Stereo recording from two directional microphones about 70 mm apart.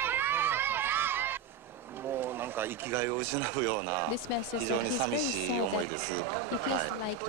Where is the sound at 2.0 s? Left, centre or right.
Right.